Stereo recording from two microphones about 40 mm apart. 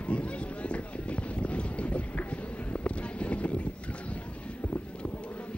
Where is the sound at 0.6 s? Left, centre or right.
Left.